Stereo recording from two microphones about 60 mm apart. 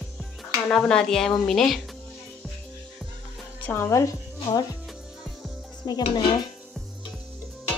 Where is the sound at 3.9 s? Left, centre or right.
Left.